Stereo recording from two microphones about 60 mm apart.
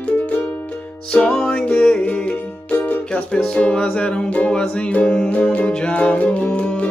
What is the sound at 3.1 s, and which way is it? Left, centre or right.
Music, centre.